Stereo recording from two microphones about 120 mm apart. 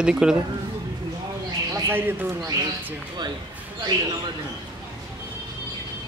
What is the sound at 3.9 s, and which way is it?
Speech, 35° right (ahead or behind).